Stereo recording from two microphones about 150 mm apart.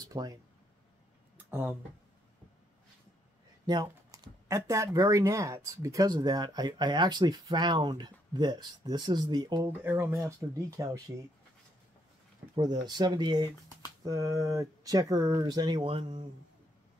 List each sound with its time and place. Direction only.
0.1 s speech: 25° right (ahead or behind)
1.5 s speech: 15° right (ahead or behind)
3.6 s speech: 25° right (ahead or behind)
9.7 s speech: 15° right (ahead or behind)
12.5 s speech: 25° right (ahead or behind)